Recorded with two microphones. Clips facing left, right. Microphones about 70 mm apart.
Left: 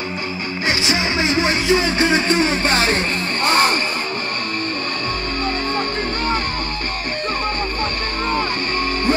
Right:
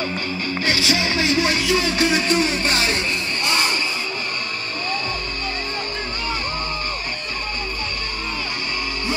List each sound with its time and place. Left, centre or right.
0.7 s music: left